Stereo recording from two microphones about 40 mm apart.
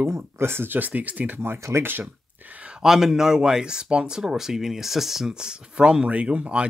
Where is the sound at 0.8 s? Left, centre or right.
Right.